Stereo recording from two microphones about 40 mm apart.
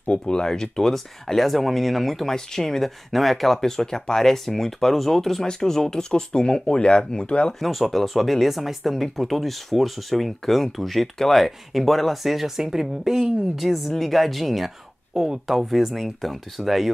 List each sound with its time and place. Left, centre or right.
0.0 s speech: left; by 2.2 s centre
2.2 s speech: centre
7.6 s speech: centre
11.4 s speech: centre